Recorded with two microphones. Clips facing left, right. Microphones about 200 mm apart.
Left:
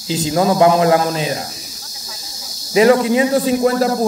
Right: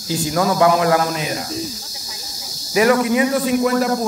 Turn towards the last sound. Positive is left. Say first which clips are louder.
# left 2 dB
turn(degrees=30)  # may be behind; listen again after turning